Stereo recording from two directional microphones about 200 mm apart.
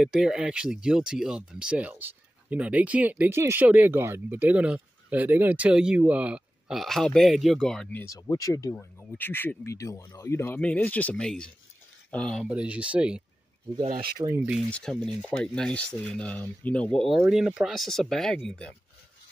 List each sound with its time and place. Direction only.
0.0 s speech: 5° right (ahead or behind)
8.1 s speech: 15° left (ahead or behind)
12.4 s speech: 5° right (ahead or behind)
13.8 s speech: 40° right (ahead or behind)
14.2 s speech: 10° right (ahead or behind)
14.7 s speech: 5° left (ahead or behind)